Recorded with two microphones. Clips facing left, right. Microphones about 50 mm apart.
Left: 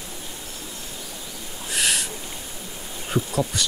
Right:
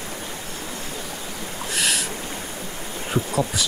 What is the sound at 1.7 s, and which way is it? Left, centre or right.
Owl, centre.